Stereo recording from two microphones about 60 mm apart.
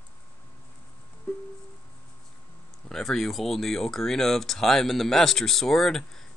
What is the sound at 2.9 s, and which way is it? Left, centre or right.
Speech, centre.